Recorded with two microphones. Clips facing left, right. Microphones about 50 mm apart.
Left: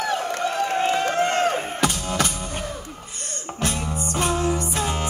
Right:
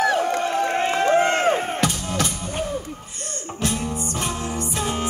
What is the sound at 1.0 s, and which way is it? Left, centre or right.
Crowd, right.